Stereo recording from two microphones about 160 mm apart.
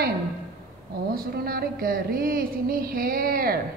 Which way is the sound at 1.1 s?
70° right (ahead or behind).